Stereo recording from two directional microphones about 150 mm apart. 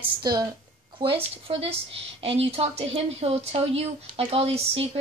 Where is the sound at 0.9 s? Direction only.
35° right (ahead or behind).